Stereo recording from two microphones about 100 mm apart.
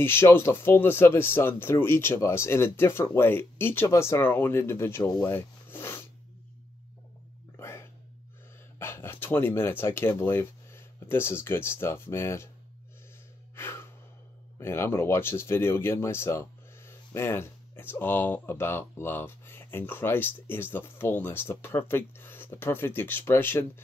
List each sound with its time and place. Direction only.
0.0 s speech: 25° left (ahead or behind)
5.2 s rub: 20° left (ahead or behind)
7.5 s a sound: 25° left (ahead or behind)
8.7 s speech: 25° left (ahead or behind)
13.6 s gasp: 25° left (ahead or behind)
14.6 s speech: 25° left (ahead or behind)